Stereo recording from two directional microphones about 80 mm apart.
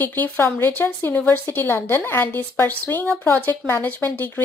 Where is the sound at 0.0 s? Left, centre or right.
Left.